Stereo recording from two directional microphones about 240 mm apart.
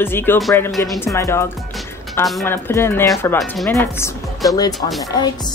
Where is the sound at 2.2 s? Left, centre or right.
Centre.